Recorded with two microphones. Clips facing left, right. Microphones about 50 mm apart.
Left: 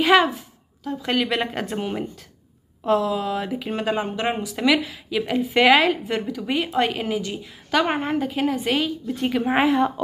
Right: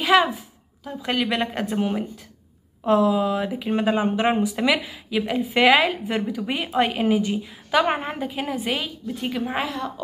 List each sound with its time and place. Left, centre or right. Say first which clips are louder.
0.0 s a woman's voice: left 1 dB; centre
4.2 s a woman's voice: right 2 dB; centre
9.4 s a woman's voice: left 10 dB; left